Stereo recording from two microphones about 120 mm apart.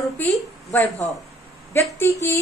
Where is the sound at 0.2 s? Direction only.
20° left (ahead or behind).